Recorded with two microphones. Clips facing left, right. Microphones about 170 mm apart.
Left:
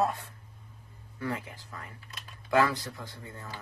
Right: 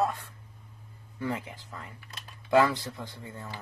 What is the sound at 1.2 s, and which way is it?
Speech, 25° right (ahead or behind).